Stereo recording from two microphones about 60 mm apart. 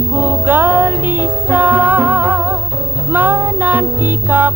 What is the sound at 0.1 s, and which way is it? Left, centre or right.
Music, right.